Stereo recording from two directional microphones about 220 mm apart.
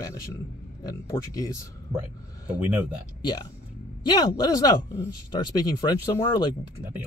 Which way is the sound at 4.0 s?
20° left (ahead or behind).